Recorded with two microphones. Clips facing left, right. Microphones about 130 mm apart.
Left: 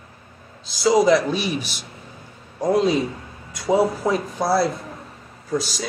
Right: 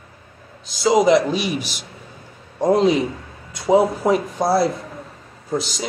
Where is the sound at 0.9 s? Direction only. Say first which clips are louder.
Right 1 dB; 20° right (ahead or behind).